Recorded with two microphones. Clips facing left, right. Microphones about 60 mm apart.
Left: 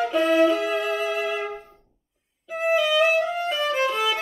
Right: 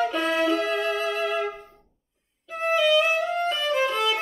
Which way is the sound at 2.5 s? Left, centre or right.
Centre.